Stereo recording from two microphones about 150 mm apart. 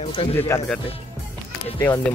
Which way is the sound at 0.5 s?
20° left (ahead or behind).